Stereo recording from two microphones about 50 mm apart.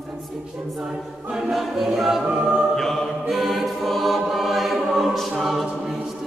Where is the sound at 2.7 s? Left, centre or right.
Centre.